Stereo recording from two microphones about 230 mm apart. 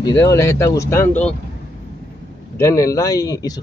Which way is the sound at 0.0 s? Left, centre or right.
Centre.